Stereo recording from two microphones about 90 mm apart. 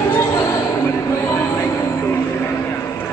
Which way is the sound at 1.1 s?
30° left (ahead or behind).